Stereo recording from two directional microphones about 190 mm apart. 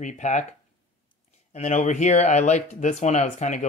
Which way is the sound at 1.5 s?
35° left (ahead or behind).